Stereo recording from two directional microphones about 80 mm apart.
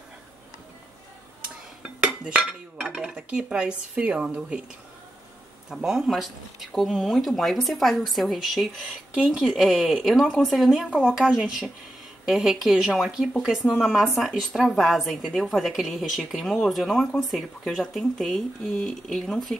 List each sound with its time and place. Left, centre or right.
2.0 s speech: centre
5.7 s speech: centre